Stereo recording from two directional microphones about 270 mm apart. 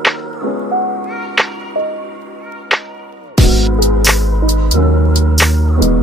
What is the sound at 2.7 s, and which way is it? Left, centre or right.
Music, centre.